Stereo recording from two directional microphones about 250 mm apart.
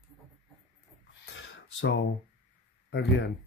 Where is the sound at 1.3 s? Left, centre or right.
Left.